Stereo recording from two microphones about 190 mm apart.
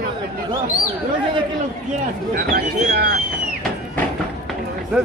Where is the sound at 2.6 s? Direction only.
55° right (ahead or behind).